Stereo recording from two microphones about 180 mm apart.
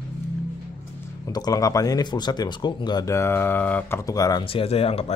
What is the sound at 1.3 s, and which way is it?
Speech, 20° left (ahead or behind).